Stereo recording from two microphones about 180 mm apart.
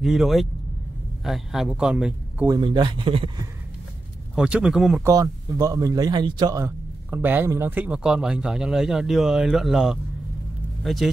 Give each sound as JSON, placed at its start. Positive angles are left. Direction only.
{"t": 0.0, "sound": "a man's voice", "side_deg": 0}
{"t": 2.4, "sound": "speech", "side_deg": -25}
{"t": 4.4, "sound": "speech", "side_deg": -5}
{"t": 5.0, "sound": "a man's voice", "side_deg": -20}